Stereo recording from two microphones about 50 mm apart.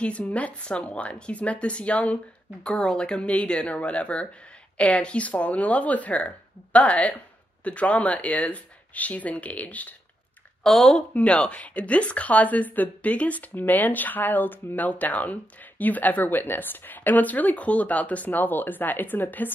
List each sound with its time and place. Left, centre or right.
0.0 s speech: left
2.6 s speech: centre; by 9.9 s left
10.6 s speech: centre
11.1 s a woman's voice: left